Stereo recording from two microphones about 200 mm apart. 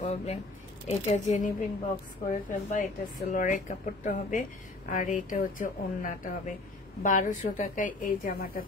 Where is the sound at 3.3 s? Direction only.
40° left (ahead or behind).